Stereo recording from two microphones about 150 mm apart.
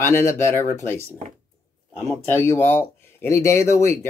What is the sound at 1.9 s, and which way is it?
Speech, 15° left (ahead or behind).